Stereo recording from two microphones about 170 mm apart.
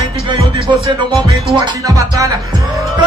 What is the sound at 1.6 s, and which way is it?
Music, 20° right (ahead or behind).